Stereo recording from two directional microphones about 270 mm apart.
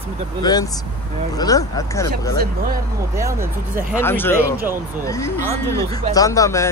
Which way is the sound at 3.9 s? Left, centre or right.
Centre.